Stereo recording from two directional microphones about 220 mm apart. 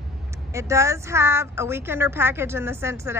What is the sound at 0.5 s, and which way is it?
A woman's voice, 15° right (ahead or behind).